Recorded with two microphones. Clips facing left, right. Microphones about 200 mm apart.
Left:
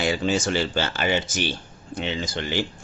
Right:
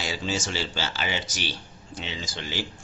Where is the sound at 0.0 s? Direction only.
60° left (ahead or behind).